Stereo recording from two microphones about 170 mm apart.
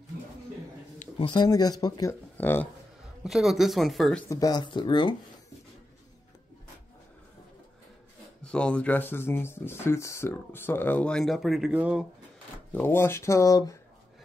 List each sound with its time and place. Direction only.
1.1 s speech: 25° left (ahead or behind)
2.3 s speech: 10° left (ahead or behind)
3.3 s speech: centre (ahead or behind)
4.3 s speech: 20° left (ahead or behind)
8.4 s speech: 5° left (ahead or behind)
12.7 s speech: 15° left (ahead or behind)